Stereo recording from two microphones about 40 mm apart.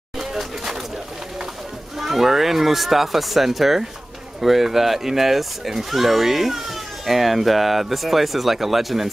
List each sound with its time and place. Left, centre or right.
0.2 s pigeon: centre
2.0 s speech: centre